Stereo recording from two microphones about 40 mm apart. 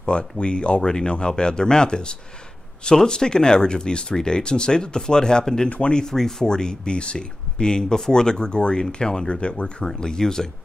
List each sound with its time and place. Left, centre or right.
0.0 s speech: left
5.7 s speech: left
6.0 s speech: centre